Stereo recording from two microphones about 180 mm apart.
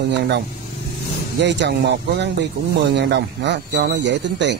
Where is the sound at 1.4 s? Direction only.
75° right (ahead or behind).